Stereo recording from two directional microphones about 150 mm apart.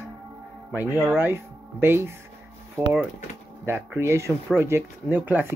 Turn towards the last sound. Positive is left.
turn(degrees=-10)  # may be behind; listen again after turning